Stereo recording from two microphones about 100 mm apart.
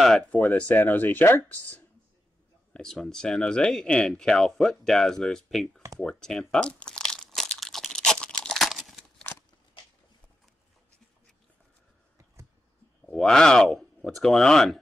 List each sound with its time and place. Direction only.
0.3 s speech: 15° left (ahead or behind)
2.7 s speech: 5° left (ahead or behind)
5.9 s crumpling: 5° left (ahead or behind)
13.0 s speech: 5° left (ahead or behind)